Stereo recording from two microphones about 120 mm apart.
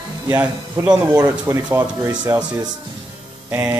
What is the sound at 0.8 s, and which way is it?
Speech, 10° right (ahead or behind).